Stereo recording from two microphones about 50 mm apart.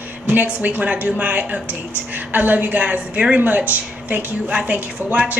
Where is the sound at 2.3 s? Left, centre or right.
Right.